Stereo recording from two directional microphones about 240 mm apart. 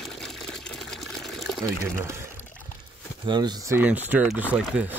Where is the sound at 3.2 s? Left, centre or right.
Centre.